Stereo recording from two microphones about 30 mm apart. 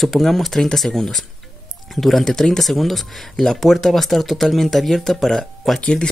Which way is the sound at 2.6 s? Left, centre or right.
Centre.